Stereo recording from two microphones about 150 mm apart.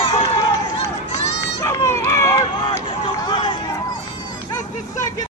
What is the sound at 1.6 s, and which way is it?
Run, 20° left (ahead or behind).